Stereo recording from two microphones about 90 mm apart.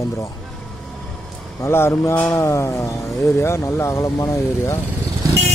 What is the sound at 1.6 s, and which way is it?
Speech, 30° left (ahead or behind).